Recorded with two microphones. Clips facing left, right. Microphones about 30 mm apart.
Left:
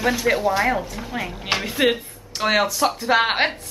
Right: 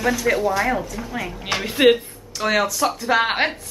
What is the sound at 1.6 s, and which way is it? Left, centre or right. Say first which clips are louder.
Speech: right 6 dB; centre.